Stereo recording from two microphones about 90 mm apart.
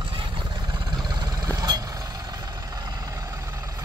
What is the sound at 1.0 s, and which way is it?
Vehicle, 50° right (ahead or behind).